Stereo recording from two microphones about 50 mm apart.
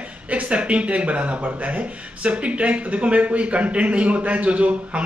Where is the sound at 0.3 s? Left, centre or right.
Right.